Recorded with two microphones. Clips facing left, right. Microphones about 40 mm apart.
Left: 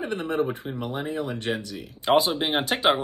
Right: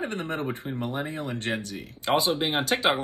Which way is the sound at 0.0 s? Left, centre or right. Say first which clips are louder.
Left 4 dB; right.